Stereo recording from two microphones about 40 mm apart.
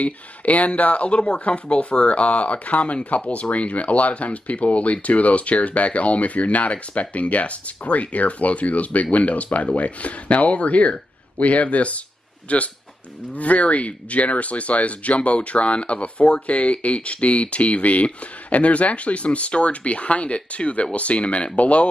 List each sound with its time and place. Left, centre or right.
0.0 s speech: left